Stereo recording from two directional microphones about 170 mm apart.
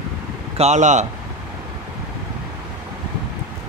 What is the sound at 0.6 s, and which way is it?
Speech, 45° right (ahead or behind).